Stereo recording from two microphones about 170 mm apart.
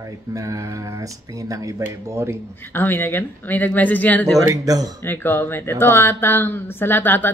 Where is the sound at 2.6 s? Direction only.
10° left (ahead or behind).